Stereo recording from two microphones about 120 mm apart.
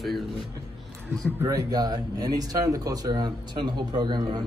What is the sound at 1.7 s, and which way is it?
A man's voice, 35° right (ahead or behind).